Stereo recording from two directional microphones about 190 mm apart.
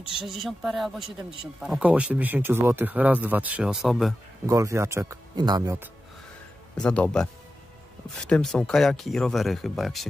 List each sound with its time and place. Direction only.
0.1 s speech: centre (ahead or behind)
4.5 s speech: 15° right (ahead or behind)
6.8 s speech: 5° left (ahead or behind)
8.3 s speech: 5° left (ahead or behind)